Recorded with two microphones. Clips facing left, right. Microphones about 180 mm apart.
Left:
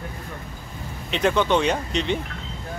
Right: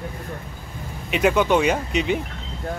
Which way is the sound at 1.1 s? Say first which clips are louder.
Right 2 dB; 10° right (ahead or behind).